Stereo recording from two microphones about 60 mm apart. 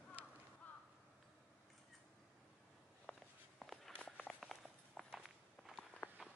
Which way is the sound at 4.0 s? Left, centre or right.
Centre.